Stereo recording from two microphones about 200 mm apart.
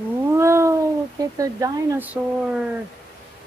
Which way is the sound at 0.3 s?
15° right (ahead or behind).